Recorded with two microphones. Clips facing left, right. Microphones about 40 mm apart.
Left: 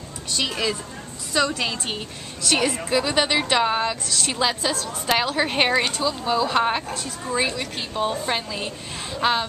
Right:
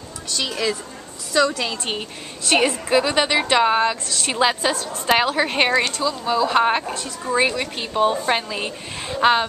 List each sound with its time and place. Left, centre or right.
1.3 s a woman's voice: centre
1.9 s a woman's voice: centre
4.3 s a woman's voice: centre
6.5 s speech: centre
7.2 s a woman's voice: right